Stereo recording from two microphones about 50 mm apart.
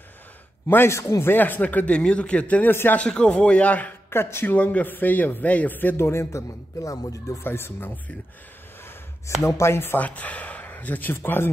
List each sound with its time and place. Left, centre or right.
0.8 s speech: left
1.2 s a man's voice: left
1.9 s a man's voice: left
2.7 s speech: left
3.0 s a man's voice: centre
4.1 s speech: left
4.7 s a man's voice: left
5.9 s a man's voice: left
7.4 s speech: left
9.4 s speech: left
9.9 s speech: left